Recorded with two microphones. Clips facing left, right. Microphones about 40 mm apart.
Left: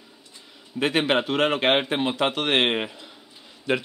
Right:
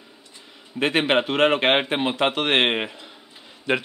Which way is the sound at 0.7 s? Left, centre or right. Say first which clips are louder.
Right 2 dB; centre.